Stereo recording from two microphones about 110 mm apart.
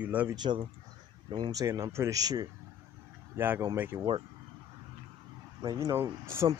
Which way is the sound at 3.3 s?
20° right (ahead or behind).